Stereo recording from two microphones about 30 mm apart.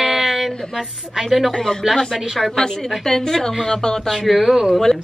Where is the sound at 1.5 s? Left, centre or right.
Centre.